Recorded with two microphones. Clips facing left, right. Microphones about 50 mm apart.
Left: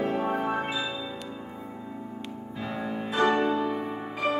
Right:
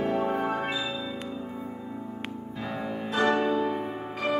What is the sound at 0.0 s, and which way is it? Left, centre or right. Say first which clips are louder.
Music: right 1 dB; centre.